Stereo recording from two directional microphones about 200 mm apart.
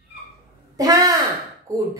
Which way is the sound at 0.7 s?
20° right (ahead or behind).